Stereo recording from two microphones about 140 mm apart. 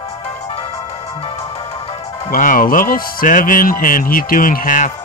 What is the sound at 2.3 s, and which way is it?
Speech, 80° left.